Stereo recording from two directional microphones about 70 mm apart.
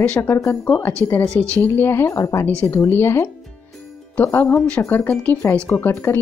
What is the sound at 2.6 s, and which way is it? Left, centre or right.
Speech, left.